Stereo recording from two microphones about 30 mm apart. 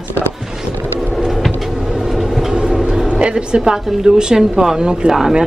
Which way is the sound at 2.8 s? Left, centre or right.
Right.